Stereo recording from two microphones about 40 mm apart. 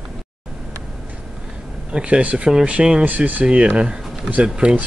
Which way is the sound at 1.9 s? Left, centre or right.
Right.